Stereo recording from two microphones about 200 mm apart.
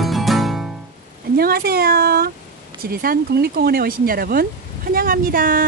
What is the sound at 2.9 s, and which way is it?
Speech, 45° right (ahead or behind).